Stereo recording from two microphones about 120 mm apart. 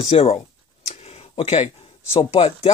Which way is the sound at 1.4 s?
60° left (ahead or behind).